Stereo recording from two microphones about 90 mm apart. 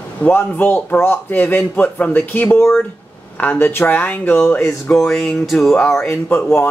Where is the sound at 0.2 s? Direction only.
25° left (ahead or behind).